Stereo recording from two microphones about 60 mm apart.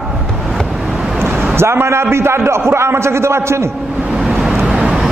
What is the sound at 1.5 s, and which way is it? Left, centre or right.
A man's voice, right.